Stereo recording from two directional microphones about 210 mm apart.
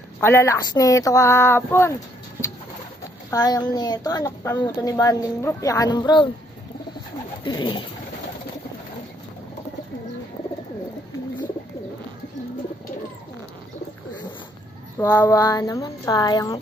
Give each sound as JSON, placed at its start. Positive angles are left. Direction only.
{"t": 0.2, "sound": "a woman's voice", "side_deg": 10}
{"t": 3.3, "sound": "a woman's voice", "side_deg": 20}
{"t": 7.4, "sound": "bird", "side_deg": 20}
{"t": 15.0, "sound": "a woman's voice", "side_deg": 15}